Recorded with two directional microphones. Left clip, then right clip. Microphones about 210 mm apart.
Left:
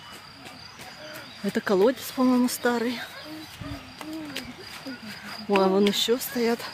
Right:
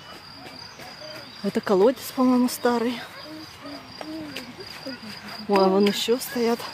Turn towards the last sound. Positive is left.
turn(degrees=0)  # may be behind; listen again after turning